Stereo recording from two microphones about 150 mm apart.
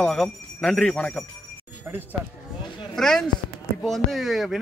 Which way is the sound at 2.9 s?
Centre (ahead or behind).